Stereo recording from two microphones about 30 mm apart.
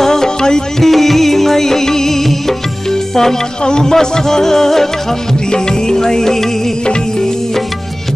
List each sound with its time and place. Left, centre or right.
0.0 s music: centre
0.8 s music: centre
3.6 s music: left